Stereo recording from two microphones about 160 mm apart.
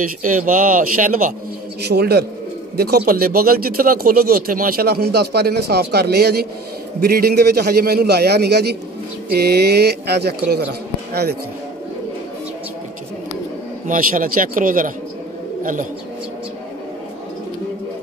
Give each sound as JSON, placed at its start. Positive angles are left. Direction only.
{"t": 0.2, "sound": "speech", "side_deg": -55}
{"t": 1.9, "sound": "a sound", "side_deg": -90}
{"t": 3.1, "sound": "speech", "side_deg": -65}
{"t": 7.1, "sound": "a man's voice", "side_deg": -70}
{"t": 9.3, "sound": "a sound", "side_deg": -85}
{"t": 13.8, "sound": "speech", "side_deg": -60}